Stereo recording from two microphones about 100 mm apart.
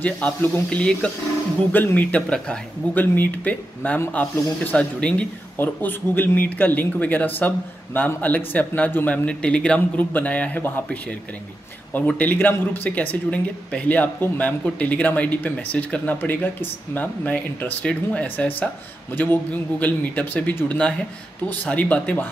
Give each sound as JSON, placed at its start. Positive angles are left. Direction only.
{"t": 0.0, "sound": "speech", "side_deg": 15}